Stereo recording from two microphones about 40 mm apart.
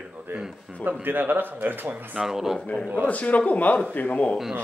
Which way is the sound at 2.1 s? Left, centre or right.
Centre.